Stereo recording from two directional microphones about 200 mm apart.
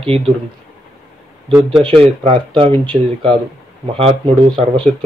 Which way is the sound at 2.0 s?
25° right (ahead or behind).